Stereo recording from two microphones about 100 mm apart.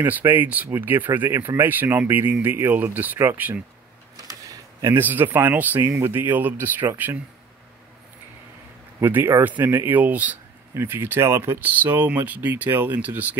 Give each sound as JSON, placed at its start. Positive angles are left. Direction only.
{"t": 0.0, "sound": "speech", "side_deg": -20}
{"t": 4.8, "sound": "speech", "side_deg": -20}
{"t": 9.0, "sound": "speech", "side_deg": -20}